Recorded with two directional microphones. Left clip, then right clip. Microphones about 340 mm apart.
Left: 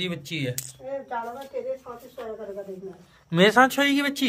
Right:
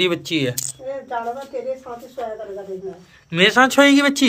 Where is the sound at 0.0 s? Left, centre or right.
Centre.